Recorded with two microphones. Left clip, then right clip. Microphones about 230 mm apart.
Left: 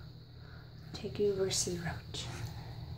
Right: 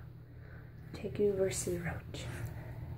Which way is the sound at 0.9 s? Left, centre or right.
Centre.